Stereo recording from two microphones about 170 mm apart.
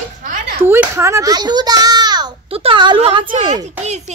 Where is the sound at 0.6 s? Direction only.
15° right (ahead or behind); by 3.5 s 30° right (ahead or behind).